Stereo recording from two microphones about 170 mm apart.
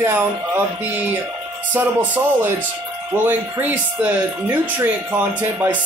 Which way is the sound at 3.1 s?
10° right (ahead or behind).